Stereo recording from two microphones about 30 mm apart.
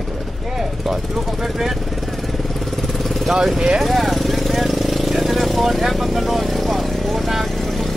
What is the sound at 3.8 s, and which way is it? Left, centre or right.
Vehicle, centre.